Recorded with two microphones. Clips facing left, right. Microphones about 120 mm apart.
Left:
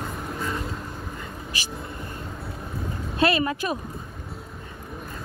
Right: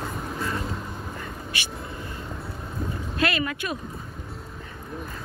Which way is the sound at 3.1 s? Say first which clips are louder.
Left 4 dB; 30° left (ahead or behind).